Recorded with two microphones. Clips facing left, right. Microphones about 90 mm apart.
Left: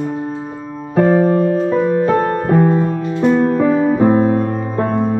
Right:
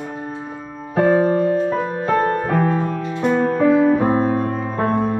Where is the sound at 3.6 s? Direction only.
15° left (ahead or behind).